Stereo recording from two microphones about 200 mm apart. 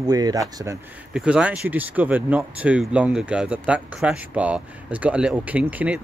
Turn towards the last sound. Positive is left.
turn(degrees=-5)  # may be behind; listen again after turning